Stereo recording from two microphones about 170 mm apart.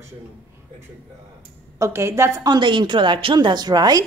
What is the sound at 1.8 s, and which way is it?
A woman's voice, 15° right (ahead or behind).